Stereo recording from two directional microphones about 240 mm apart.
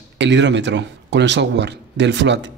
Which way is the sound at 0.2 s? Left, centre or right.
Right.